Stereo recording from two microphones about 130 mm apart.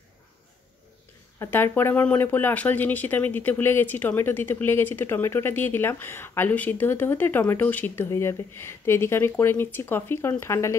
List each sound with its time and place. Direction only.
1.4 s speech: 15° left (ahead or behind)